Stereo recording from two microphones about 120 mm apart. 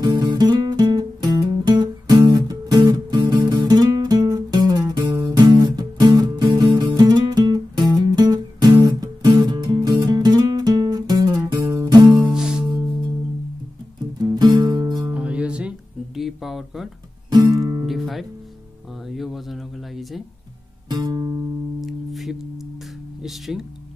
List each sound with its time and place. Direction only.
0.0 s music: 35° right (ahead or behind)
12.2 s music: 5° right (ahead or behind)
12.6 s music: 35° right (ahead or behind)
14.2 s music: 35° right (ahead or behind)
15.1 s music: 10° right (ahead or behind)
16.2 s a sound: centre (ahead or behind)
17.3 s music: 35° right (ahead or behind)
17.8 s music: centre (ahead or behind)
19.0 s a sound: centre (ahead or behind)
20.9 s music: 35° right (ahead or behind)
21.8 s music: centre (ahead or behind)